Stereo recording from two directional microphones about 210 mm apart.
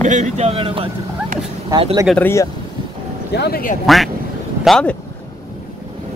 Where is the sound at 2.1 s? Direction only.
10° left (ahead or behind).